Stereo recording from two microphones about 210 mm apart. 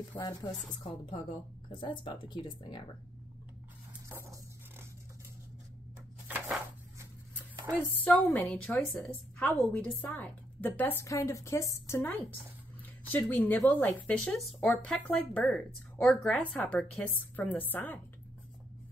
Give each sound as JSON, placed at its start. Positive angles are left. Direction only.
{"t": 0.1, "sound": "a woman's voice", "side_deg": 15}
{"t": 1.7, "sound": "speech", "side_deg": 20}
{"t": 4.1, "sound": "a sound", "side_deg": -10}
{"t": 6.2, "sound": "a sound", "side_deg": -10}
{"t": 7.8, "sound": "a woman's voice", "side_deg": 10}
{"t": 13.1, "sound": "a woman's voice", "side_deg": 10}